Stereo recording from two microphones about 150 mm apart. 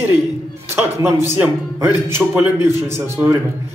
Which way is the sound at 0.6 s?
15° right (ahead or behind).